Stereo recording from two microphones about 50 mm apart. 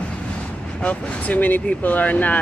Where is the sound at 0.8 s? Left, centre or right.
Left.